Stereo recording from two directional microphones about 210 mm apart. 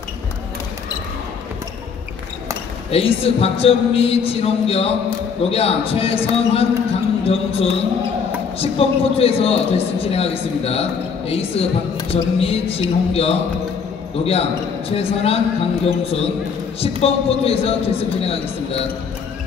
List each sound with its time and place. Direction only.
2.9 s a man's voice: 30° left (ahead or behind)